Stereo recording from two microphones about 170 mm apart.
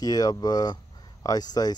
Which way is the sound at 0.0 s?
20° left (ahead or behind).